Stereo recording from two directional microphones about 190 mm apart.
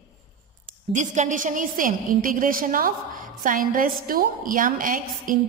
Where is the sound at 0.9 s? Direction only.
40° right (ahead or behind).